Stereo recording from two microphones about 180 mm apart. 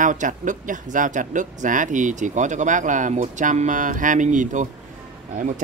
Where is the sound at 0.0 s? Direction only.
45° right (ahead or behind).